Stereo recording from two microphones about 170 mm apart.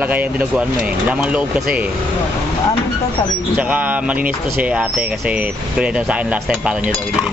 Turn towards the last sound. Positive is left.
turn(degrees=-5)  # may be behind; listen again after turning